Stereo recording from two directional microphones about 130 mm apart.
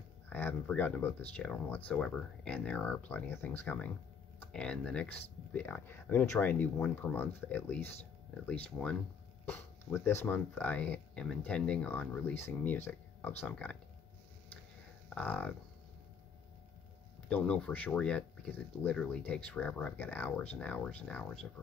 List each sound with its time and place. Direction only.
0.3 s speech: 15° left (ahead or behind)
15.1 s speech: 10° left (ahead or behind)
17.3 s speech: 10° left (ahead or behind)